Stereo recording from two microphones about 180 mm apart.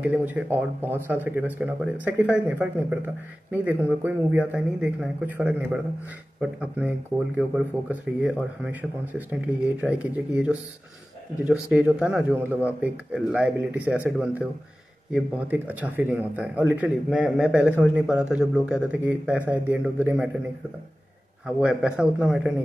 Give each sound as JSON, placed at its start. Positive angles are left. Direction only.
{"t": 0.0, "sound": "speech", "side_deg": -10}
{"t": 21.5, "sound": "speech", "side_deg": -5}